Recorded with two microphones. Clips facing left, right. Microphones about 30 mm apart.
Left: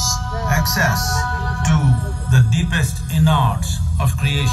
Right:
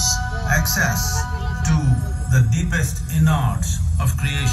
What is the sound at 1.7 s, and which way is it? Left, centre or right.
Speech, left.